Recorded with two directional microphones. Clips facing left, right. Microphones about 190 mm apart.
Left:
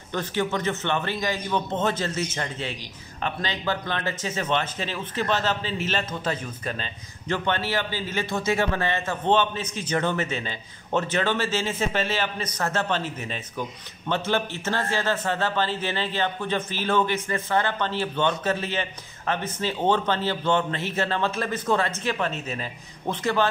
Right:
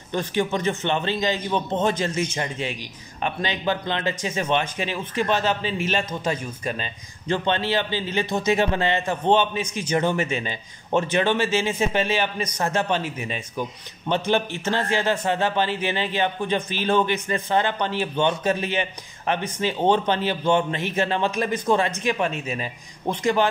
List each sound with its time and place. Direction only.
0.1 s a man's voice: 15° right (ahead or behind)